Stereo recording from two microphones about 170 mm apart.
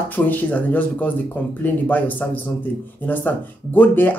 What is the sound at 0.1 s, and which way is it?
Speech, 10° left (ahead or behind).